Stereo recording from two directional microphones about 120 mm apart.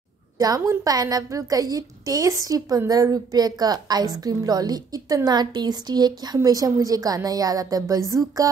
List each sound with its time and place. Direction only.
0.4 s a woman's voice: 30° right (ahead or behind)